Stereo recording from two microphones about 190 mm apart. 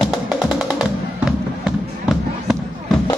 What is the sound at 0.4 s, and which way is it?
Music, 5° right (ahead or behind).